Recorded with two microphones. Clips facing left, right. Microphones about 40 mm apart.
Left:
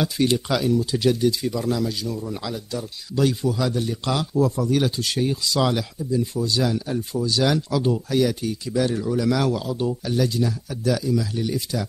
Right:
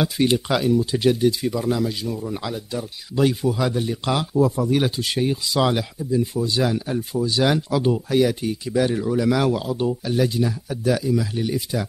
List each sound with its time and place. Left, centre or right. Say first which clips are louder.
0.0 s speech: right 1 dB; centre